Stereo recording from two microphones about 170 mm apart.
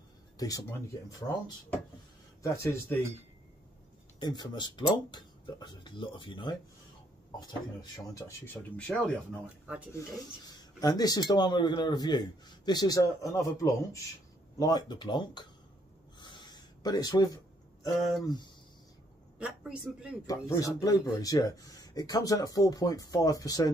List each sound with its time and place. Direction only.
0.4 s speech: 20° left (ahead or behind)
2.4 s speech: 15° left (ahead or behind)
4.2 s speech: 25° left (ahead or behind)
8.7 s speech: 5° left (ahead or behind)
10.8 s speech: 20° left (ahead or behind)
16.2 s a sound: 25° left (ahead or behind)
19.3 s a man's voice: 5° right (ahead or behind)
20.2 s speech: 20° left (ahead or behind)